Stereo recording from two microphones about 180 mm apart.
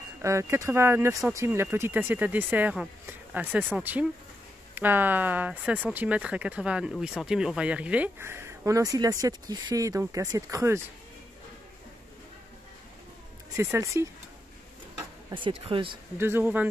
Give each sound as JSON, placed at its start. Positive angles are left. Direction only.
{"t": 0.2, "sound": "speech", "side_deg": -15}
{"t": 13.6, "sound": "speech", "side_deg": -15}
{"t": 15.2, "sound": "speech", "side_deg": -30}
{"t": 16.2, "sound": "speech", "side_deg": -10}